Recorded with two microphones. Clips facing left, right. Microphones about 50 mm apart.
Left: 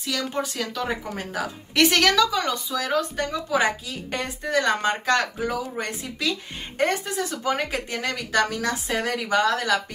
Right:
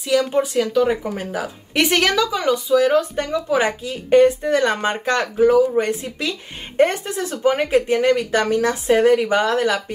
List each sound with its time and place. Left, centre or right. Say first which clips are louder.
0.1 s a woman's voice: right 10 dB; centre